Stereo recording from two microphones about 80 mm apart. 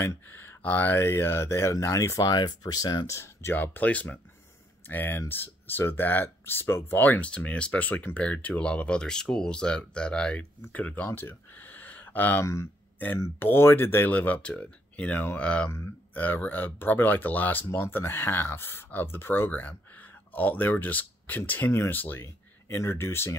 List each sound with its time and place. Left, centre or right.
0.0 s speech: left
2.2 s speech: left
3.1 s speech: left
3.5 s speech: left
11.1 s a sound: left
13.2 s speech: left